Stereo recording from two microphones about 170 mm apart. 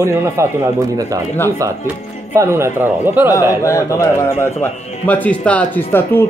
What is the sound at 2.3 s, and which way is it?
Speech, 15° right (ahead or behind).